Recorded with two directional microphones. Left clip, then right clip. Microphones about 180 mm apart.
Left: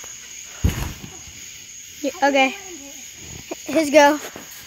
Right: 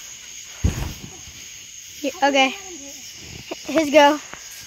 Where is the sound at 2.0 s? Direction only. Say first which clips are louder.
Even; 5° left (ahead or behind).